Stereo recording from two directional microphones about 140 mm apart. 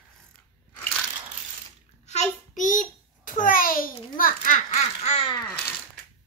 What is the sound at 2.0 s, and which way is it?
Child singing, 60° left (ahead or behind).